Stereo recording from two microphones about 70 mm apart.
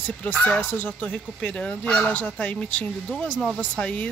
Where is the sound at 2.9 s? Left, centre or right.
Centre.